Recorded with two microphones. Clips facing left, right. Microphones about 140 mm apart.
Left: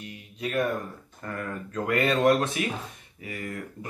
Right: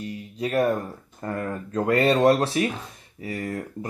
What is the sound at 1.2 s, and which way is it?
Speech, 35° right (ahead or behind).